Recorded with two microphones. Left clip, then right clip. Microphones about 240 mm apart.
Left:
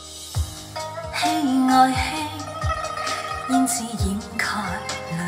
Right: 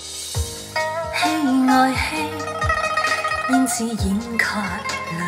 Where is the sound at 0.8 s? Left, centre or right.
Left.